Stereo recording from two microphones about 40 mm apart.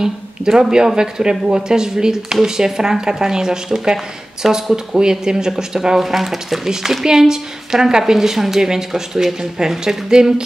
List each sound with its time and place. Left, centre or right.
0.0 s a woman's voice: centre